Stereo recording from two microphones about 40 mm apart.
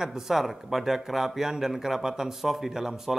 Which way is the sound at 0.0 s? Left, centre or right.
Centre.